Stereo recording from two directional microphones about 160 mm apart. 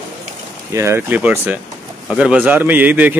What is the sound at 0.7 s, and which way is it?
A man's voice, 15° right (ahead or behind).